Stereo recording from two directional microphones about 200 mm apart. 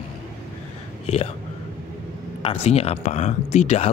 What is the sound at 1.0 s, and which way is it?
Speech, 30° left (ahead or behind).